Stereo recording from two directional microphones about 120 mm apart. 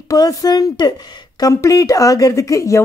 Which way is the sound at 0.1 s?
30° left (ahead or behind).